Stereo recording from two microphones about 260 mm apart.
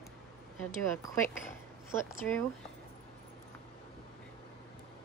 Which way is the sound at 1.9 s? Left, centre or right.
Centre.